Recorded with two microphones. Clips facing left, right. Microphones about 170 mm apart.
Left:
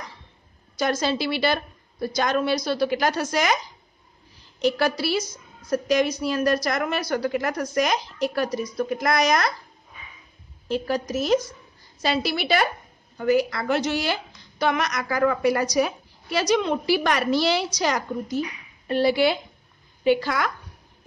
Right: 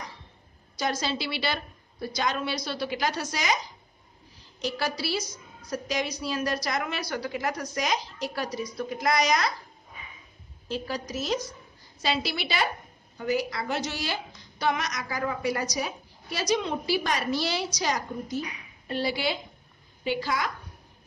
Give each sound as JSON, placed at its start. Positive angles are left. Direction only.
{"t": 0.7, "sound": "a woman's voice", "side_deg": 55}
{"t": 4.6, "sound": "a woman's voice", "side_deg": 60}
{"t": 10.7, "sound": "a woman's voice", "side_deg": 55}